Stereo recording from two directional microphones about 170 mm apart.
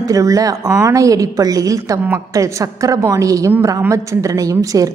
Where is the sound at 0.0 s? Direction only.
20° right (ahead or behind).